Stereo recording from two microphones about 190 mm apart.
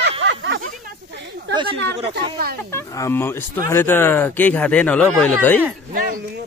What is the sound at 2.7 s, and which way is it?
Speech, 15° left (ahead or behind).